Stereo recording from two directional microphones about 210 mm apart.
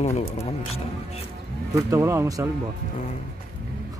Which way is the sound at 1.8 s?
15° right (ahead or behind).